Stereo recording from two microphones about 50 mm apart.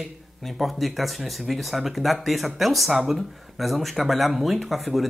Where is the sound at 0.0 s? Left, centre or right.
Centre.